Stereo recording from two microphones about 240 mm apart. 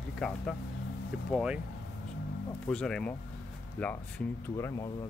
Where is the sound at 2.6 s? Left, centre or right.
Centre.